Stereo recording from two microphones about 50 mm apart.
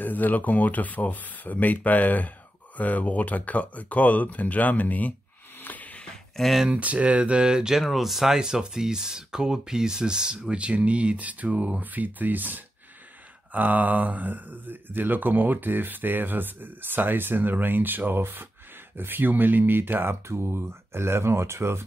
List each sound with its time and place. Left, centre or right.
0.0 s speech: left
5.6 s a sound: left
6.3 s speech: centre
6.7 s speech: right
7.8 s speech: centre; by 21.8 s right